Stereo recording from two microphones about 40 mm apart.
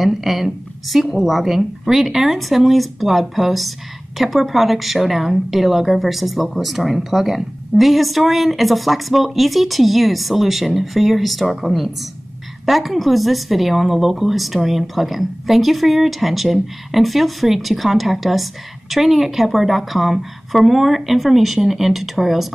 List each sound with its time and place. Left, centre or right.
0.0 s a woman's voice: centre